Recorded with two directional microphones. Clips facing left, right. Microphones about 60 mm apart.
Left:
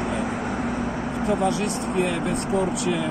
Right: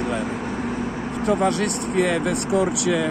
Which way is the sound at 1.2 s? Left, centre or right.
Right.